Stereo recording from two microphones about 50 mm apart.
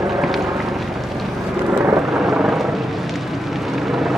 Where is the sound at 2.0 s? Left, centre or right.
Right.